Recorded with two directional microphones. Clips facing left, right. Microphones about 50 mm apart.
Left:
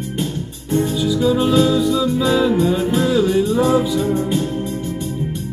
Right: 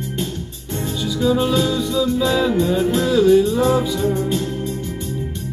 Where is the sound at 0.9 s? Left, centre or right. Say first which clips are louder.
Right 2 dB; centre.